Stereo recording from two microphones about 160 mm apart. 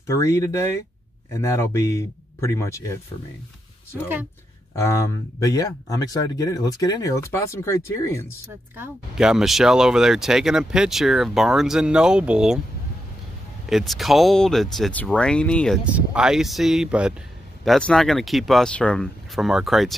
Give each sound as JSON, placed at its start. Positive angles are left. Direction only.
{"t": 0.0, "sound": "speech", "side_deg": 20}
{"t": 3.9, "sound": "speech", "side_deg": -15}
{"t": 4.7, "sound": "speech", "side_deg": 20}
{"t": 8.7, "sound": "speech", "side_deg": -10}
{"t": 13.7, "sound": "speech", "side_deg": 0}
{"t": 15.8, "sound": "speech", "side_deg": -5}